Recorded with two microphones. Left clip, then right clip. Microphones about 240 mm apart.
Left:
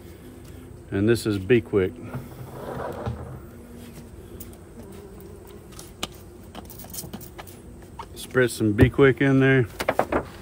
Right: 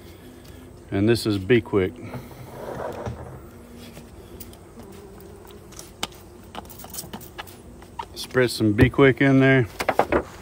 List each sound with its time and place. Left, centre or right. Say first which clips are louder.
0.8 s speech: right 1 dB; right
8.2 s speech: right 1 dB; right
9.8 s door: right 2 dB; centre